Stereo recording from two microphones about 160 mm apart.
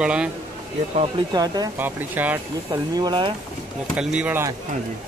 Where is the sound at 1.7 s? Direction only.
10° right (ahead or behind).